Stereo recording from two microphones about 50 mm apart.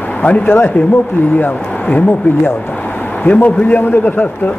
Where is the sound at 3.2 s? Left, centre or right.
Left.